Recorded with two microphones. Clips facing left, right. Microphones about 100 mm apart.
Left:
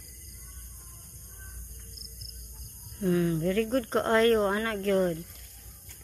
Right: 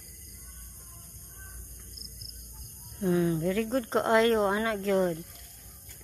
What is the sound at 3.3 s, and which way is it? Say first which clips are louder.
Speech: left 1 dB; 5° right (ahead or behind).